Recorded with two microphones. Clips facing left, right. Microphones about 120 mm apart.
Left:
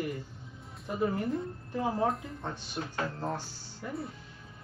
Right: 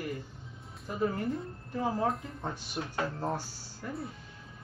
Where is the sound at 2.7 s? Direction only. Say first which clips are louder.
Right 1 dB; 15° right (ahead or behind).